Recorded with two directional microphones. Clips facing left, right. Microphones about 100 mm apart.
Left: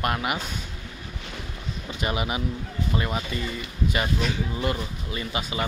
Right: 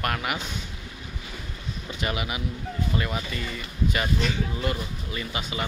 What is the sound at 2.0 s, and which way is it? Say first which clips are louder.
Speech: left 3 dB; 30° left (ahead or behind).